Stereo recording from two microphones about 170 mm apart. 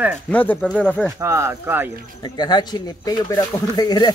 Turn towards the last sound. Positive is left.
turn(degrees=25)  # may be behind; listen again after turning